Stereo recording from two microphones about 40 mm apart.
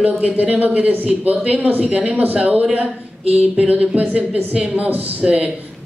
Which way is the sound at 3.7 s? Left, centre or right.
Right.